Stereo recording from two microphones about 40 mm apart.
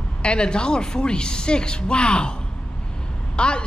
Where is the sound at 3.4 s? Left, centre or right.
Left.